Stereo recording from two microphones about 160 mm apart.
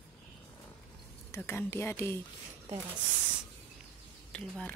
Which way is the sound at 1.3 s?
15° left (ahead or behind).